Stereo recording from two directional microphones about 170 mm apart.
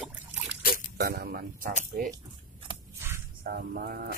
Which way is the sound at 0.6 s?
55° left (ahead or behind).